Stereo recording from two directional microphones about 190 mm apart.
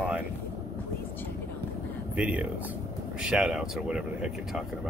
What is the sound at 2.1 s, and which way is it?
Speech, 5° right (ahead or behind).